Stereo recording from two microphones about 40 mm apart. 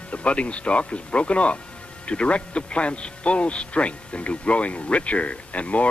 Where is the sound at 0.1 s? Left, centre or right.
Left.